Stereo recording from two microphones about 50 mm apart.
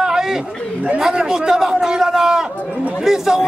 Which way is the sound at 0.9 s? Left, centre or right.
Centre.